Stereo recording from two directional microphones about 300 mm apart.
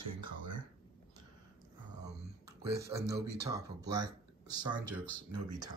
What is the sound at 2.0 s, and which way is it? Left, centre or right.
Speech, centre.